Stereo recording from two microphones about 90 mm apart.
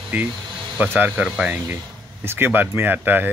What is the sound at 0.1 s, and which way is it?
Speech, 20° right (ahead or behind).